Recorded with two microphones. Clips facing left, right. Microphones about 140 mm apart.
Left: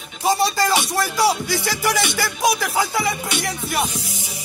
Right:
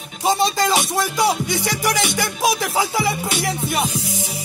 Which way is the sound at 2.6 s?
20° right (ahead or behind).